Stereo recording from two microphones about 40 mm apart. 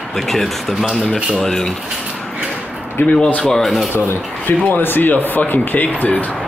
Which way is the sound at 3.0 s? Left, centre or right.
Left.